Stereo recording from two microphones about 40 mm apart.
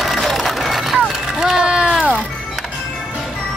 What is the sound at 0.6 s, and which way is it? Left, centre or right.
Vehicle, centre.